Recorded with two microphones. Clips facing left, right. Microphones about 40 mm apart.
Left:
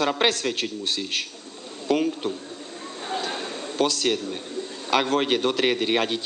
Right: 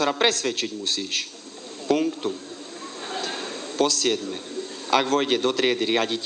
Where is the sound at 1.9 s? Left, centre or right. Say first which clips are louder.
Even; centre.